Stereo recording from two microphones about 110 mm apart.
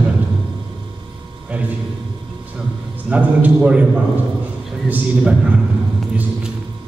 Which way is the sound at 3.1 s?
10° right (ahead or behind).